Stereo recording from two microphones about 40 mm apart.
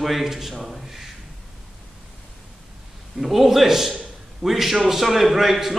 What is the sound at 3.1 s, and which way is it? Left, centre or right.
A man's voice, centre.